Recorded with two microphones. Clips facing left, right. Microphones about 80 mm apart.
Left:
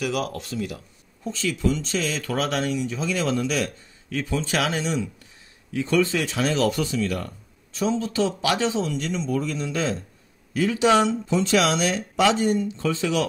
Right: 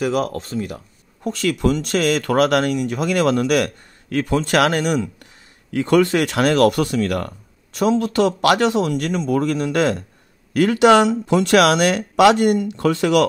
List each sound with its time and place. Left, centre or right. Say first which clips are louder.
0.0 s speech: right 6 dB; right
1.2 s speech: right 6 dB; right